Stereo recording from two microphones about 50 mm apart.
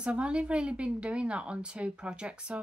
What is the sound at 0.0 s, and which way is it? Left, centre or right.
A woman's voice, right.